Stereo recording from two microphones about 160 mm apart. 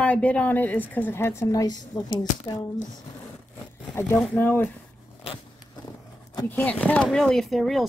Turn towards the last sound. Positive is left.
turn(degrees=0)  # may be behind; listen again after turning